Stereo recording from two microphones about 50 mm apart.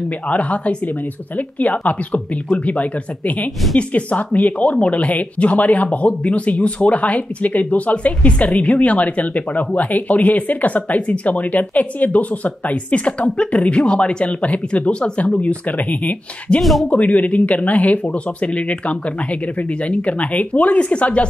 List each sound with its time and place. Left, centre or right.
0.3 s speech: left
16.5 s speech: centre
16.8 s speech: left